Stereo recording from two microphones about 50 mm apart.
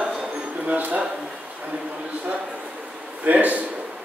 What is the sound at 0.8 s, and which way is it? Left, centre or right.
Speech, right.